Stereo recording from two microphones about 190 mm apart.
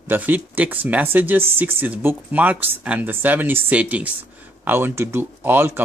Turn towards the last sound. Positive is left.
turn(degrees=-10)  # may be behind; listen again after turning